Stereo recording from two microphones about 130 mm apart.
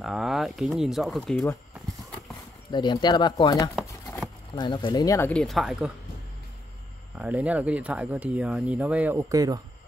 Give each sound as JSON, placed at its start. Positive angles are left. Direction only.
{"t": 0.0, "sound": "speech", "side_deg": 0}
{"t": 2.7, "sound": "speech", "side_deg": 35}
{"t": 4.6, "sound": "speech", "side_deg": 40}
{"t": 5.0, "sound": "speech", "side_deg": 25}
{"t": 5.3, "sound": "speech", "side_deg": 5}
{"t": 7.2, "sound": "speech", "side_deg": -10}
{"t": 9.3, "sound": "speech", "side_deg": -25}